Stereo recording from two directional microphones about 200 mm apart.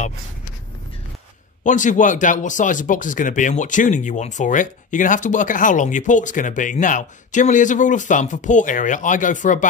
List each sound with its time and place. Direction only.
1.6 s speech: 40° left (ahead or behind)